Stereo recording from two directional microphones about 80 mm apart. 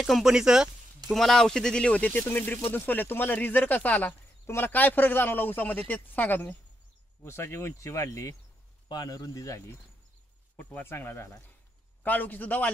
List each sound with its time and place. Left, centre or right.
0.0 s speech: centre; by 6.5 s left
7.2 s speech: left
8.8 s speech: left
10.6 s speech: centre